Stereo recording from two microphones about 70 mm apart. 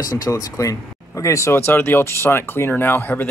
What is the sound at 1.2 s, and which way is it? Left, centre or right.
Speech, left.